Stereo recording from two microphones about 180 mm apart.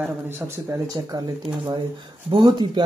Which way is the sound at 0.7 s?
20° right (ahead or behind).